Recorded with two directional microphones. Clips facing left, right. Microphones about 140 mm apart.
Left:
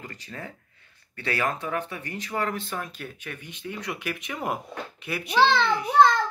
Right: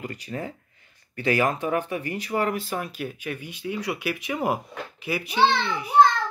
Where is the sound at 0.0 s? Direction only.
15° right (ahead or behind).